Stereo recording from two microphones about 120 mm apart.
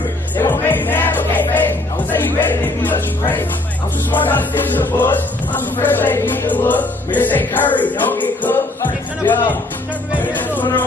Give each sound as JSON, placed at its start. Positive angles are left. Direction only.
{"t": 0.4, "sound": "music", "side_deg": 15}